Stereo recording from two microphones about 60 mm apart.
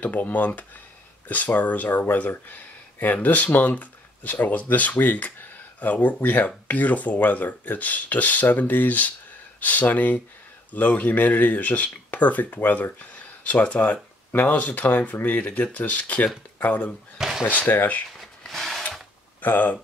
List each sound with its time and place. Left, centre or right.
0.0 s speech: left
17.2 s drawer open or close: centre
17.6 s speech: left
18.4 s wood: centre
19.4 s speech: left